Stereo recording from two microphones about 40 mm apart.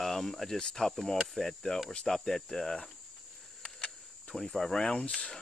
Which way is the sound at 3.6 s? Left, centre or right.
Centre.